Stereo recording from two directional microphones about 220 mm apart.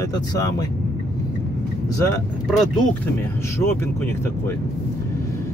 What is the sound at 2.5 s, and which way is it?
Speech, 10° left (ahead or behind).